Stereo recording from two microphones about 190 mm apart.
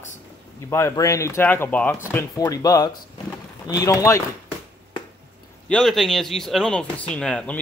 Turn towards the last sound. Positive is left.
turn(degrees=5)  # may be behind; listen again after turning